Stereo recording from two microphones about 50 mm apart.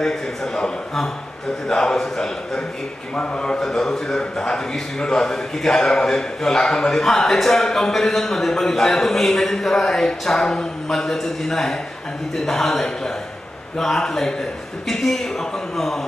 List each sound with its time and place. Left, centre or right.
0.0 s a man's voice: centre